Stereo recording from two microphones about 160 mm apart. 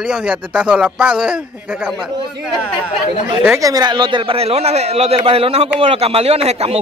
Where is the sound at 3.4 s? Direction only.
15° right (ahead or behind).